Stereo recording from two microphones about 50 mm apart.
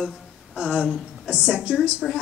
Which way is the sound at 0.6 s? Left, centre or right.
Centre.